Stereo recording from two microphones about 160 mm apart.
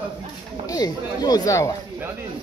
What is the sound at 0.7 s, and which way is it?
Speech, 25° left (ahead or behind).